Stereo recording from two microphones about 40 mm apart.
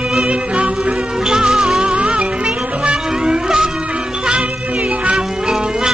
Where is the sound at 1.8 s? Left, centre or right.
Right.